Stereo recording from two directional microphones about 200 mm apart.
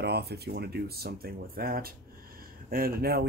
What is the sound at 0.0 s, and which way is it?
Speech, 55° right (ahead or behind).